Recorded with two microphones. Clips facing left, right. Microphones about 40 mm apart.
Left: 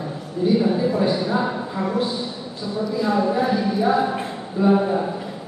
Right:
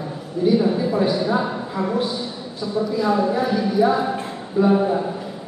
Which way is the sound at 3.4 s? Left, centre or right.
Centre.